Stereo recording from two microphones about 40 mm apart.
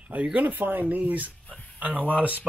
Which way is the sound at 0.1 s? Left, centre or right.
Right.